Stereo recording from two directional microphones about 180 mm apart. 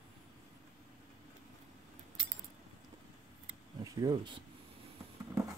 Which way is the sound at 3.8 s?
20° right (ahead or behind).